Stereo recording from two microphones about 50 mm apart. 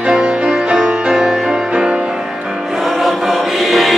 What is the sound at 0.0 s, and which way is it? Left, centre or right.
Music, centre.